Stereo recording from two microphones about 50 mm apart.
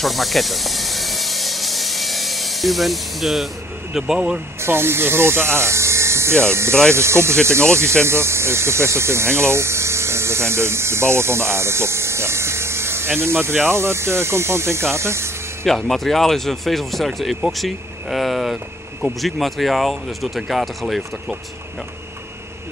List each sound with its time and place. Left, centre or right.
0.0 s hiss: centre
4.6 s speech: right
15.6 s speech: centre